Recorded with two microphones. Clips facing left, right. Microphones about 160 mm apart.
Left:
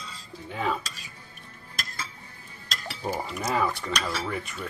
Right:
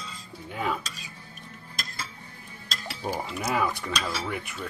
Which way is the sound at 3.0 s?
Centre (ahead or behind).